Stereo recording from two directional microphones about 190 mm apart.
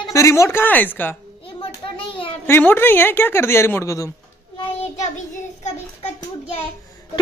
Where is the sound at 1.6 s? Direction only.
30° left (ahead or behind).